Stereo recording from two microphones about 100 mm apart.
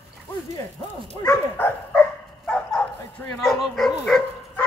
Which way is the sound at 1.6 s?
20° left (ahead or behind).